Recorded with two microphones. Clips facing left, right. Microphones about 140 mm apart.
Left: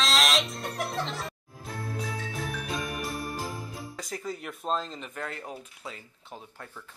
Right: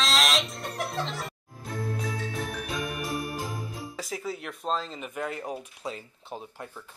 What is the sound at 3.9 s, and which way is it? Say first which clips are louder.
Speech: right 2 dB; 5° right (ahead or behind).